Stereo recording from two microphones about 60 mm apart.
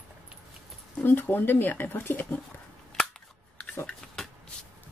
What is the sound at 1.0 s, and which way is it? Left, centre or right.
Speech, left.